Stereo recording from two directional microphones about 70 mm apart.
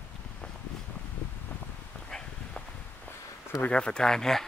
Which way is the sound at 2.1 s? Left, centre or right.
Centre.